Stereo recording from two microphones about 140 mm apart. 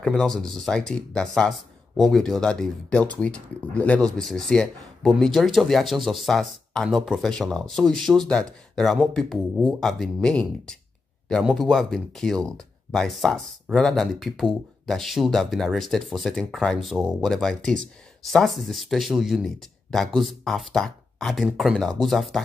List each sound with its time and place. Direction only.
0.0 s speech: 5° left (ahead or behind)